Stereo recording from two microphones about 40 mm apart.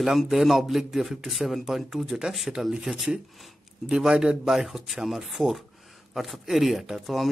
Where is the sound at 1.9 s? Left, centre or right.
Centre.